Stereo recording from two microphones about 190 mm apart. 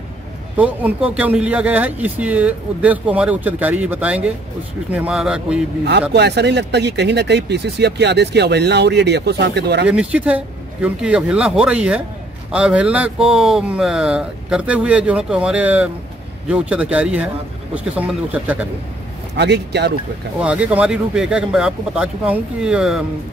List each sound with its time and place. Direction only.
0.6 s speech: 5° right (ahead or behind)
5.9 s speech: 60° right (ahead or behind)
9.8 s speech: 5° right (ahead or behind)
19.3 s speech: 60° right (ahead or behind)
20.3 s speech: 5° right (ahead or behind)